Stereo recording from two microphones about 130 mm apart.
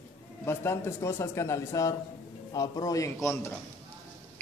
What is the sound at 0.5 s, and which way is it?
A man's voice, 20° left (ahead or behind).